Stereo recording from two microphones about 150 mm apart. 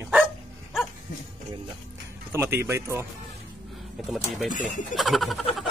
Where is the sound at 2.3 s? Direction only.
15° right (ahead or behind).